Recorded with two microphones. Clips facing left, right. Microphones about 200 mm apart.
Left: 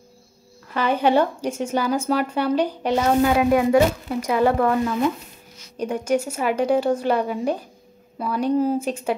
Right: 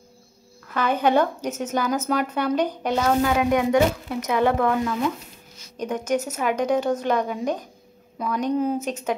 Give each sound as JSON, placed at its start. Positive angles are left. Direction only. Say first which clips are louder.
{"t": 0.7, "sound": "a woman's voice", "louder": "left 1 dB", "side_deg": 10}